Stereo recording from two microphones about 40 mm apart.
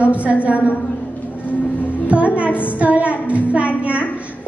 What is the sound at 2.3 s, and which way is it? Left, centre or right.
A woman's voice, right.